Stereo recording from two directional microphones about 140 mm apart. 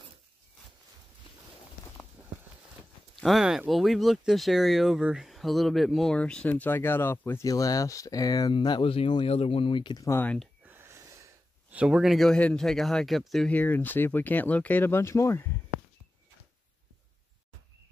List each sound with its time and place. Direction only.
3.2 s speech: centre (ahead or behind); by 10.0 s 35° left (ahead or behind)
10.0 s speech: 15° left (ahead or behind)
10.6 s a sound: 15° right (ahead or behind)
11.7 s speech: 5° right (ahead or behind); by 15.5 s 20° left (ahead or behind)